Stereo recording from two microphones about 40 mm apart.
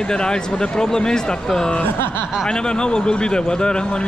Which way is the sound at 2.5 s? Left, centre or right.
Left.